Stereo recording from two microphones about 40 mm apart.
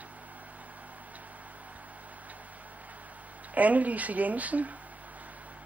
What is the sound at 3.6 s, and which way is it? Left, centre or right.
Speech, right.